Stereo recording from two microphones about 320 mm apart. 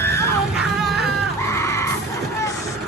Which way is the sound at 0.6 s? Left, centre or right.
Centre.